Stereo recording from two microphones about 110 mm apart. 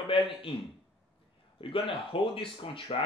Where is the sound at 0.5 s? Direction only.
55° left (ahead or behind).